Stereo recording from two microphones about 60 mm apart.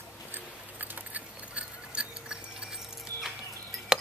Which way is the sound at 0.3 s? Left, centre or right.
Right.